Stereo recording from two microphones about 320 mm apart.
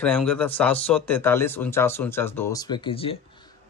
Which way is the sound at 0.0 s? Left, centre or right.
Centre.